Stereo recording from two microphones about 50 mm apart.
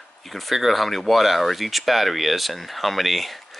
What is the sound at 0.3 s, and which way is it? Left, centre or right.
Speech, centre.